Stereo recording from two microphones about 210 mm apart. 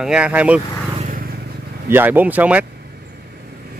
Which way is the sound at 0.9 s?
40° right (ahead or behind).